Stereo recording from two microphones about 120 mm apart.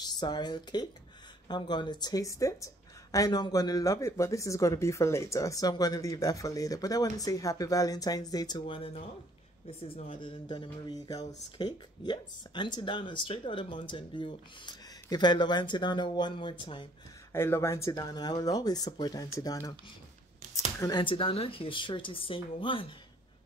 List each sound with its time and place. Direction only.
0.0 s a woman's voice: 35° left (ahead or behind)
17.3 s speech: 20° left (ahead or behind)
20.9 s speech: 45° left (ahead or behind)